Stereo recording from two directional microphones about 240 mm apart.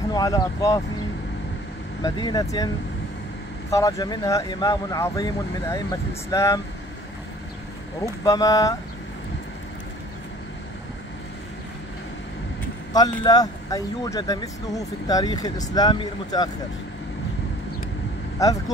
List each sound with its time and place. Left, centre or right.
0.1 s speech: centre
2.0 s speech: centre
3.7 s speech: centre
8.0 s speech: centre
12.9 s speech: centre
18.4 s speech: centre